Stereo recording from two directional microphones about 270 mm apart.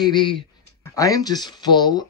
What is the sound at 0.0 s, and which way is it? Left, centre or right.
Speech, centre.